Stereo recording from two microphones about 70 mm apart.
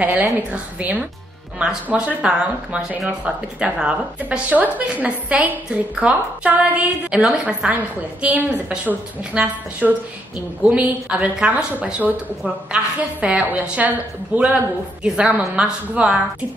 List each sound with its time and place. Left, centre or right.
0.0 s a woman's voice: right
13.2 s a woman's voice: centre